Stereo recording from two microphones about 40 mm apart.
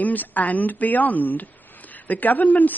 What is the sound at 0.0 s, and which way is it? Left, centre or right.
A woman's voice, left.